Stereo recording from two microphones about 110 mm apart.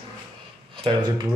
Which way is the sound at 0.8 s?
40° right (ahead or behind).